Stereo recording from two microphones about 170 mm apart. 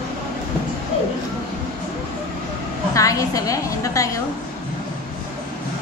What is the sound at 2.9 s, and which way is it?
A woman's voice, 20° left (ahead or behind).